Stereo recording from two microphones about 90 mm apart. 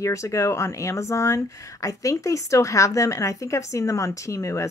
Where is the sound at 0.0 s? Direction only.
35° left (ahead or behind).